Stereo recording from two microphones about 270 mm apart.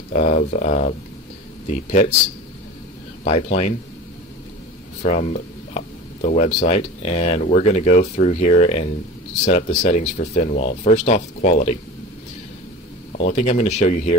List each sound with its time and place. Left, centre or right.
0.1 s speech: left
3.3 s speech: left
5.0 s speech: left
13.2 s speech: left